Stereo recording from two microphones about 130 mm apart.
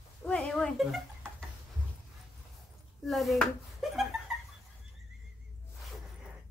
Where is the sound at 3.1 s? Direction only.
Centre (ahead or behind).